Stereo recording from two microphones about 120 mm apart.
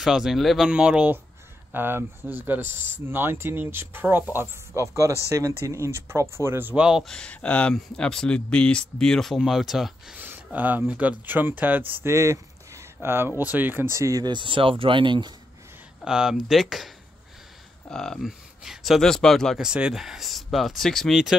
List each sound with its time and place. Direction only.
0.0 s speech: 5° right (ahead or behind)
7.1 s speech: 10° left (ahead or behind)
10.1 s speech: 15° right (ahead or behind)
13.9 s speech: 25° right (ahead or behind)
14.3 s speech: 45° right (ahead or behind)
16.0 s speech: 5° right (ahead or behind)